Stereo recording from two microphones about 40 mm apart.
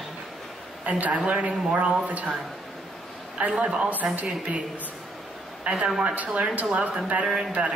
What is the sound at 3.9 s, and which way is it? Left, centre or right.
A woman's voice, right.